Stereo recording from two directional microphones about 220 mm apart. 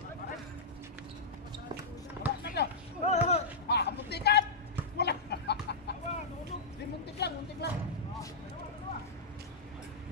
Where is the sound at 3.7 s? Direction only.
50° left (ahead or behind).